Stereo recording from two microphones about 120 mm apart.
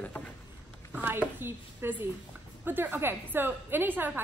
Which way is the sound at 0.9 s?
15° right (ahead or behind).